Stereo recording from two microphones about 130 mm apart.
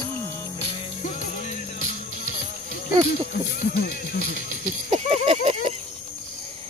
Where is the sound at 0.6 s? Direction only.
55° left (ahead or behind).